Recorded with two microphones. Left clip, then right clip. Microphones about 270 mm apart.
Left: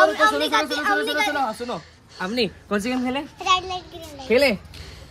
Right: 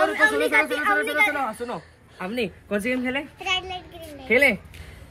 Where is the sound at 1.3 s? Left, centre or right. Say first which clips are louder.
Left 3 dB; centre.